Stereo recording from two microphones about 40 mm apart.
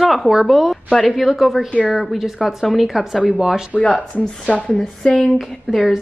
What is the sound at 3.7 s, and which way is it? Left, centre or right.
Speech, left.